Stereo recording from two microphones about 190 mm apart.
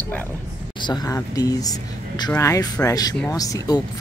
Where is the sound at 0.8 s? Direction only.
20° left (ahead or behind).